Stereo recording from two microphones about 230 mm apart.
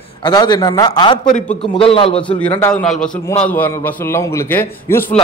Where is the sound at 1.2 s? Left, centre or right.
Left.